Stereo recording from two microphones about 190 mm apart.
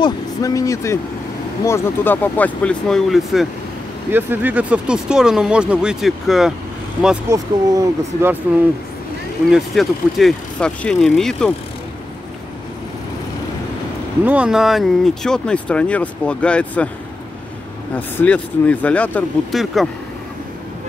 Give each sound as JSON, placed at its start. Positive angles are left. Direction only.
{"t": 0.0, "sound": "speech", "side_deg": 20}
{"t": 4.1, "sound": "speech", "side_deg": -10}
{"t": 7.2, "sound": "speech", "side_deg": -15}
{"t": 9.5, "sound": "speech", "side_deg": 0}
{"t": 14.2, "sound": "speech", "side_deg": -5}
{"t": 17.9, "sound": "speech", "side_deg": 5}